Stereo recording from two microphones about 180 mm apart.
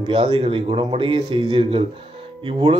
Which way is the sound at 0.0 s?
25° right (ahead or behind).